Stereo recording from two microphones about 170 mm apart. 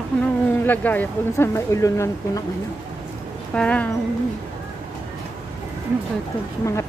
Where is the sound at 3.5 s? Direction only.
10° left (ahead or behind).